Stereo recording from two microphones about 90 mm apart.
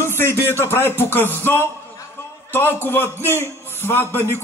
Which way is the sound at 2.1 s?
25° left (ahead or behind).